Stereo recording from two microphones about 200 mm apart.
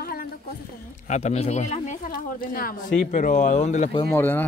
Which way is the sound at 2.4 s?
45° left (ahead or behind).